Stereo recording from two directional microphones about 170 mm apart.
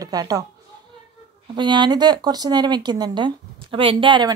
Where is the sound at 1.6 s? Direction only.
25° right (ahead or behind).